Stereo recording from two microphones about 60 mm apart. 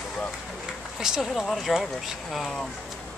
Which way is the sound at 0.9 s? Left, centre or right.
Centre.